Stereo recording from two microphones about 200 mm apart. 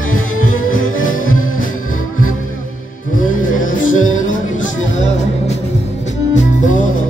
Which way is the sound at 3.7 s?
40° left (ahead or behind).